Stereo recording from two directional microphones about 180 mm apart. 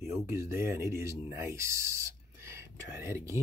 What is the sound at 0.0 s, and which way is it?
Speech, 15° right (ahead or behind).